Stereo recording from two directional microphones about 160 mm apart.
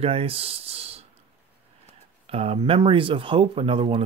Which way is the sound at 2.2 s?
40° right (ahead or behind).